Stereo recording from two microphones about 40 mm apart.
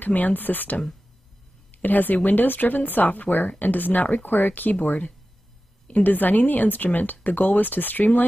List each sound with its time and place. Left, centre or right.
0.0 s speech: left
6.0 s speech: left